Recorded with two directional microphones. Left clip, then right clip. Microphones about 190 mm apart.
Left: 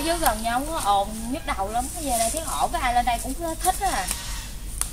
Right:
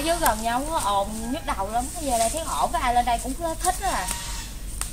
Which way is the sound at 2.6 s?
35° right (ahead or behind).